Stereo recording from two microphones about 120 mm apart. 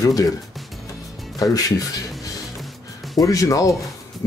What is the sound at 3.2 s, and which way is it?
Speech, 30° left (ahead or behind).